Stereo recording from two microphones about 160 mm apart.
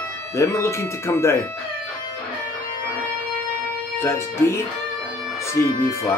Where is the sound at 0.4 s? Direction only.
15° left (ahead or behind).